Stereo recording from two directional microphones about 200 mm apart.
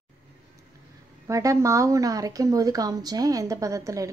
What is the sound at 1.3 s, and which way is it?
Speech, 15° right (ahead or behind).